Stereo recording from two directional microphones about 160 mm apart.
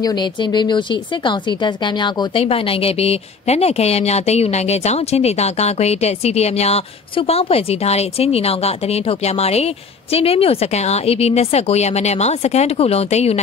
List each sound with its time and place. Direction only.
0.0 s a woman's voice: 25° left (ahead or behind)